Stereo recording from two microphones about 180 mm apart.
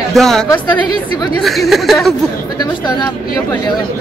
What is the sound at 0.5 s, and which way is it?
Speech, 20° left (ahead or behind).